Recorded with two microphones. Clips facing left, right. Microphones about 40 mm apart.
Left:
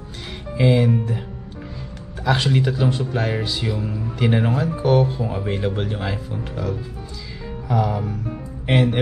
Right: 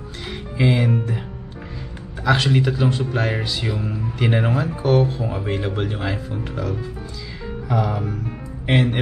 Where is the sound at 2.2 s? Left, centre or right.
Centre.